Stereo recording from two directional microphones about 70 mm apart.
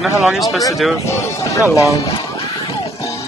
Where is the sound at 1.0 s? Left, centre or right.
Left.